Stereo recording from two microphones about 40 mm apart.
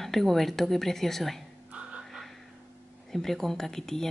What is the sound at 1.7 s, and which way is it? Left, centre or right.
Music, right.